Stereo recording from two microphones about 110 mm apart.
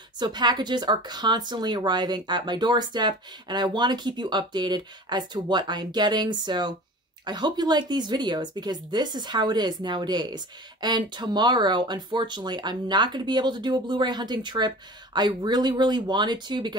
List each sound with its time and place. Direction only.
0.2 s speech: 40° right (ahead or behind)